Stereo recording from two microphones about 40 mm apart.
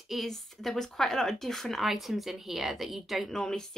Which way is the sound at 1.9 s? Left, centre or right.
Centre.